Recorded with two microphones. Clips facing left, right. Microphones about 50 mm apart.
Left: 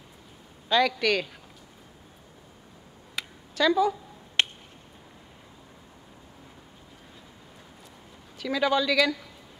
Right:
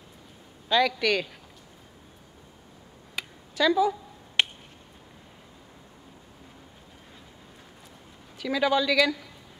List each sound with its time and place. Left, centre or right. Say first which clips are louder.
0.7 s speech: even; centre
3.6 s speech: even; centre
4.4 s a sound: right 1 dB; centre
8.4 s speech: even; centre